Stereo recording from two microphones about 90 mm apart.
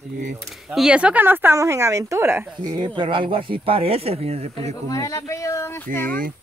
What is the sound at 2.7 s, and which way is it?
Speech, 60° right (ahead or behind).